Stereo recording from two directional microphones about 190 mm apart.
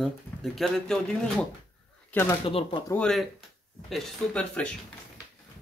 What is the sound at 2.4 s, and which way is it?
Speech, 30° left (ahead or behind).